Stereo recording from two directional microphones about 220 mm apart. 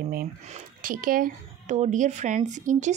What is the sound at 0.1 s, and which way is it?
Speech, 40° right (ahead or behind).